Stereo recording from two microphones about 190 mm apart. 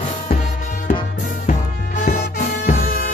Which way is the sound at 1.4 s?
40° left (ahead or behind).